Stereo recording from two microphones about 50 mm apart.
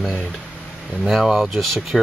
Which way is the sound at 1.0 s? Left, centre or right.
Centre.